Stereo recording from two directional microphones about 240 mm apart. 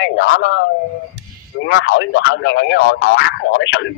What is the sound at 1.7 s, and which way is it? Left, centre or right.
Speech, left.